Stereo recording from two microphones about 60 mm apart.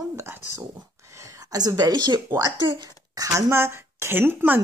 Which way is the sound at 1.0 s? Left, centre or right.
Right.